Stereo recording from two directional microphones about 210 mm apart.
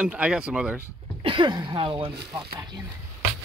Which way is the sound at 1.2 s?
25° right (ahead or behind).